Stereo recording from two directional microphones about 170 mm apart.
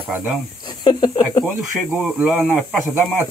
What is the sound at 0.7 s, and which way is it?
Snake, 25° left (ahead or behind).